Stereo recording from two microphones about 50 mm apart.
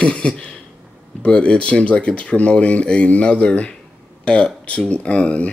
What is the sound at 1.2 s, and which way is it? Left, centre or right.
Speech, left.